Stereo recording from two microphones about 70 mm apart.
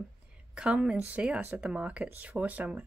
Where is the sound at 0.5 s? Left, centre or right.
Centre.